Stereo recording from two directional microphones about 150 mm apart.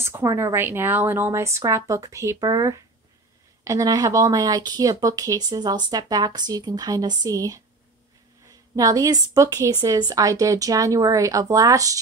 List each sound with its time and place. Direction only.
0.0 s a woman's voice: 20° right (ahead or behind)